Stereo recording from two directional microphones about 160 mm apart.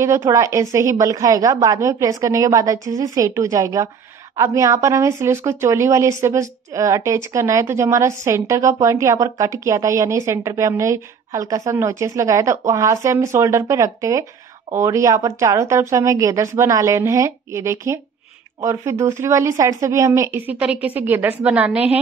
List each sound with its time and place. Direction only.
0.0 s a woman's voice: 20° right (ahead or behind)